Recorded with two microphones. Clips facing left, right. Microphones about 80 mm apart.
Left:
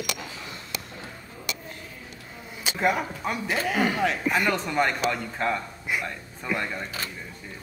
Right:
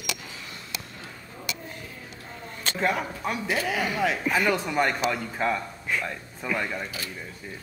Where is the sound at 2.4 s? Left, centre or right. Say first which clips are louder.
Left 2 dB; centre.